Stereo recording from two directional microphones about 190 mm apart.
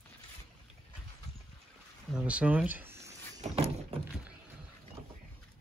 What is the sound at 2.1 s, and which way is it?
Speech, 5° right (ahead or behind).